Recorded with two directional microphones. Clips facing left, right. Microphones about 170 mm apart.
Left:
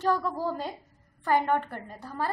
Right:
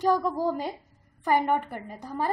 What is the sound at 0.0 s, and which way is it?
A woman's voice, 15° right (ahead or behind).